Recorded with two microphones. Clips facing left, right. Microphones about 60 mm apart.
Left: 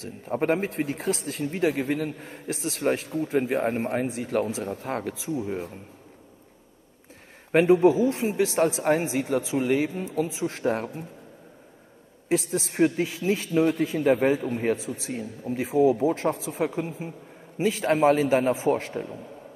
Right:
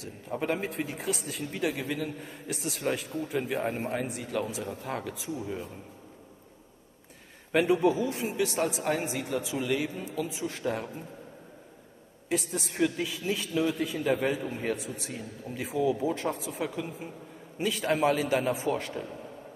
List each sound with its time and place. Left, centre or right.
0.0 s a man's voice: left
7.5 s a man's voice: left
12.3 s a man's voice: left